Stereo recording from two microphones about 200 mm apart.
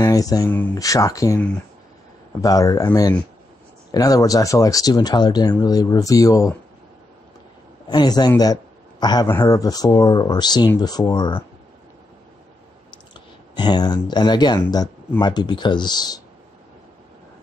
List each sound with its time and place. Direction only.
0.0 s speech: 20° left (ahead or behind)
2.4 s speech: 20° left (ahead or behind)
7.9 s speech: 20° left (ahead or behind)
13.6 s speech: 20° left (ahead or behind)